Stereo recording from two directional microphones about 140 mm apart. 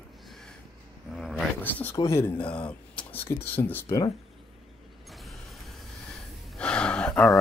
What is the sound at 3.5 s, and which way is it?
Speech, 15° left (ahead or behind).